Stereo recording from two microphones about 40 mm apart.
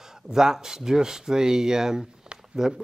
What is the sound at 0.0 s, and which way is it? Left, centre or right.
Speech, centre.